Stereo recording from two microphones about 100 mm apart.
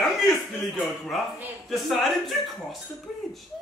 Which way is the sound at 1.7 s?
Centre (ahead or behind).